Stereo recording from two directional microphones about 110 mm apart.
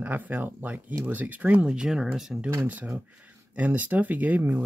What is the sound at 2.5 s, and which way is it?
Speech, 15° right (ahead or behind).